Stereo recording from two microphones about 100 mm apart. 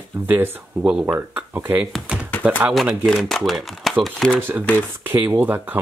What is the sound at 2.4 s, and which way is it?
Speech, 15° right (ahead or behind).